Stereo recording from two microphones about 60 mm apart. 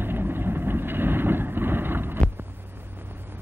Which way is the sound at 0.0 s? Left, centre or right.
Right.